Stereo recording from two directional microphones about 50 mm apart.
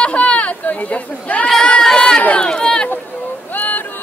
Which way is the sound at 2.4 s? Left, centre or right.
Centre.